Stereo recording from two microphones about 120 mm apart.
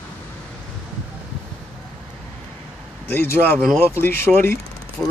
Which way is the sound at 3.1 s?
20° left (ahead or behind).